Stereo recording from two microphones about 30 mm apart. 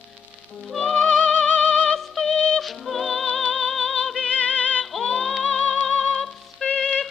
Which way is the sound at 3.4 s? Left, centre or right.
Left.